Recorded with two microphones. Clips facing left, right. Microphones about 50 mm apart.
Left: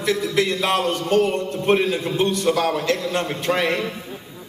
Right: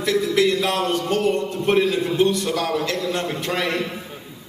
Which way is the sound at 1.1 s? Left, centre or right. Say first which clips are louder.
Left 5 dB; left.